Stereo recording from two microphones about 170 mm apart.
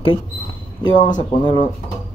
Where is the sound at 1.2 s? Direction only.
30° left (ahead or behind).